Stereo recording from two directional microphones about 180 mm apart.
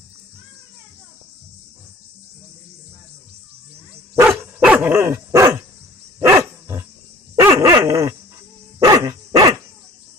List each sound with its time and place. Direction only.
4.1 s dog: 10° right (ahead or behind)